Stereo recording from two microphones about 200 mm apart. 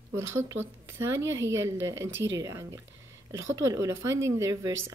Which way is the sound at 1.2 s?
65° right (ahead or behind).